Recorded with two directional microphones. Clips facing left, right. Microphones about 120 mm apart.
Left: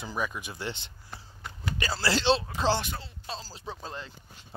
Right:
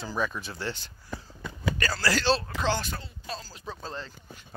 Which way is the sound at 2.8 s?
20° left (ahead or behind).